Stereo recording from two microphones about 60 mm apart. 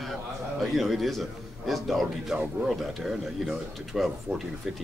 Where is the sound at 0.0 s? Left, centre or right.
Centre.